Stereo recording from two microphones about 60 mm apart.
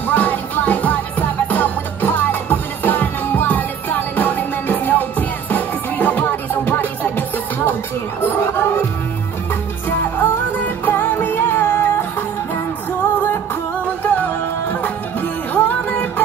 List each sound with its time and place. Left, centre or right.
0.0 s music: left
8.2 s chatter: left
10.9 s music: left
14.0 s music: left